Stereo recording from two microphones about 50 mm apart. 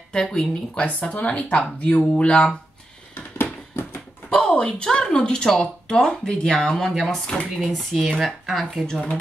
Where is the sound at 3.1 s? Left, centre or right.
Left.